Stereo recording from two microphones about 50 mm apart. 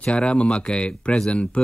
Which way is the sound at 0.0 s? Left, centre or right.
Left.